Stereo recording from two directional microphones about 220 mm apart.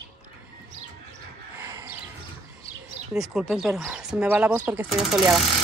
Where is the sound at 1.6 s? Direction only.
10° right (ahead or behind).